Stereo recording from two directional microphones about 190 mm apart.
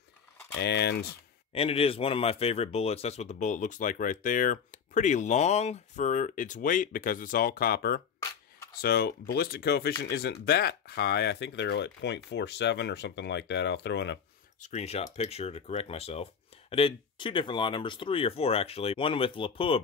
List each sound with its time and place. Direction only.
0.6 s speech: 60° left (ahead or behind)
1.5 s speech: 30° left (ahead or behind); by 14.1 s 65° left (ahead or behind)
14.6 s speech: 35° left (ahead or behind)